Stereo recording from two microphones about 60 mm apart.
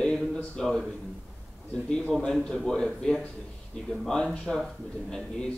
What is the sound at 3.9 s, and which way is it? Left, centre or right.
Speech, centre.